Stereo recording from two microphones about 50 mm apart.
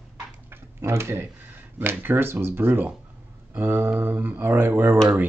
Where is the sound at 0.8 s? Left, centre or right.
Right.